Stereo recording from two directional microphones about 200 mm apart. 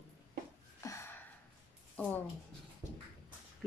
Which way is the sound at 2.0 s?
5° left (ahead or behind).